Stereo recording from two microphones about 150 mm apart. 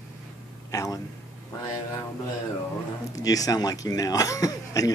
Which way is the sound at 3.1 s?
25° left (ahead or behind).